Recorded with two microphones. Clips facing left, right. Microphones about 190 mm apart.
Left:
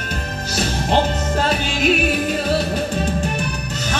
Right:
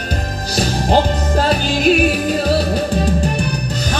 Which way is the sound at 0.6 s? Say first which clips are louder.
Right 3 dB; 35° right (ahead or behind).